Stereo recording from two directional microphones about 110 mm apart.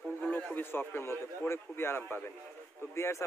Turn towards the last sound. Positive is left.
turn(degrees=25)  # may be behind; listen again after turning